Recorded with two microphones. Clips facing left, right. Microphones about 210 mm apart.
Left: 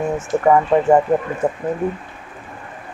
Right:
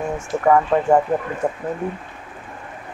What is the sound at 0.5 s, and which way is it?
Speech, 5° left (ahead or behind).